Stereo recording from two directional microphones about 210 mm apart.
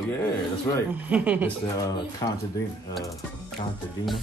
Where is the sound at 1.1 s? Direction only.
5° right (ahead or behind).